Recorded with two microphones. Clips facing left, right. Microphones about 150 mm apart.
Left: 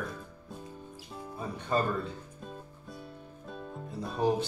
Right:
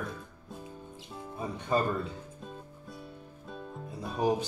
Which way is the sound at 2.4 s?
Centre (ahead or behind).